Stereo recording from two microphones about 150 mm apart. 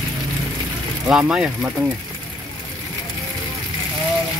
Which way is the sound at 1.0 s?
10° right (ahead or behind).